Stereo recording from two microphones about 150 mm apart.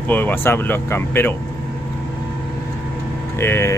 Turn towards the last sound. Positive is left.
turn(degrees=15)  # may be behind; listen again after turning